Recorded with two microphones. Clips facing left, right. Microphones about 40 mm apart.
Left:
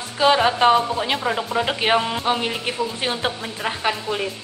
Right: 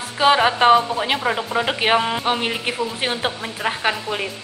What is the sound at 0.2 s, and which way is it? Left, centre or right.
A woman's voice, centre.